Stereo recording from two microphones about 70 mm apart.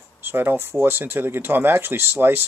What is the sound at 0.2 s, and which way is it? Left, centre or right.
Speech, right.